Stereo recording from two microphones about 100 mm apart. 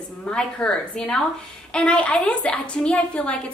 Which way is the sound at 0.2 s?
10° left (ahead or behind).